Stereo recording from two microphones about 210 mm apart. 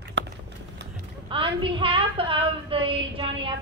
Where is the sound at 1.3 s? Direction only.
25° right (ahead or behind).